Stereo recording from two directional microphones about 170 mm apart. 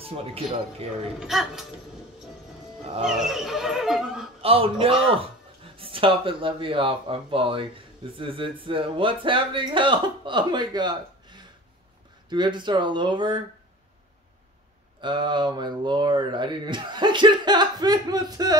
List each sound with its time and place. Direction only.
0.0 s speech: 35° right (ahead or behind)
1.2 s speech: centre (ahead or behind)
3.0 s speech: 5° right (ahead or behind)
4.4 s speech: 35° right (ahead or behind)
15.0 s speech: 25° right (ahead or behind)